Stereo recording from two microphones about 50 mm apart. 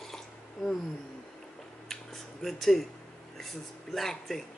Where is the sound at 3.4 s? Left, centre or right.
Centre.